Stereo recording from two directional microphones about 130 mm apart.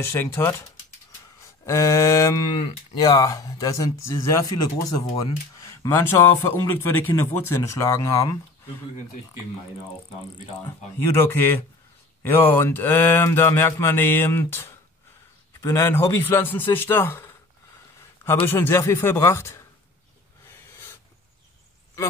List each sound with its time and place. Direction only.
0.0 s speech: 20° left (ahead or behind)
1.7 s speech: 25° left (ahead or behind)
11.0 s speech: 20° left (ahead or behind)
18.5 s speech: 15° left (ahead or behind)